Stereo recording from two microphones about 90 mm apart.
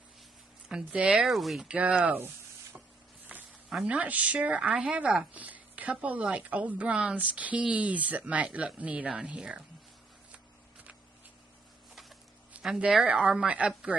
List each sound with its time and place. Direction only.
0.7 s a woman's voice: 10° right (ahead or behind)
1.2 s speech: centre (ahead or behind)
1.7 s a woman's voice: 15° right (ahead or behind)
3.3 s a sound: 15° right (ahead or behind)
3.7 s a woman's voice: 15° right (ahead or behind)
10.3 s walk: 10° right (ahead or behind)
12.5 s a woman's voice: 10° right (ahead or behind)